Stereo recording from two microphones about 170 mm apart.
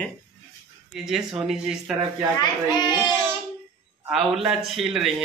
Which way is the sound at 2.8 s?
25° left (ahead or behind).